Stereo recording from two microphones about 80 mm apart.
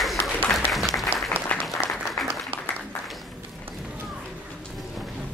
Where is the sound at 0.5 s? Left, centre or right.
Centre.